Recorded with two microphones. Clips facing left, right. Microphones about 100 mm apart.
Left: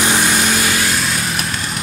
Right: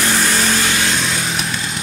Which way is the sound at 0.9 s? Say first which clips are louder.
Even; 5° left (ahead or behind).